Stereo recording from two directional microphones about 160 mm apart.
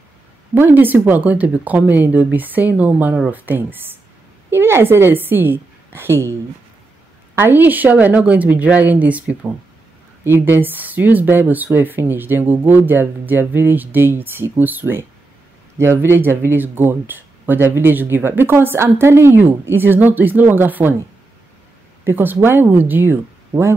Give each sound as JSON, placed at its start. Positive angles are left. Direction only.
{"t": 0.6, "sound": "a woman's voice", "side_deg": -15}
{"t": 7.3, "sound": "speech", "side_deg": -15}
{"t": 22.0, "sound": "speech", "side_deg": -15}